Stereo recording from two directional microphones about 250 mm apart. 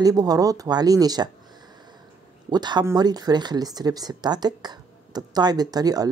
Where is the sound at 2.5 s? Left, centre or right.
Centre.